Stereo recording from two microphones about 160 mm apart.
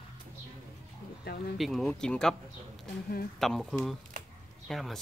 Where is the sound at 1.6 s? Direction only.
Centre (ahead or behind).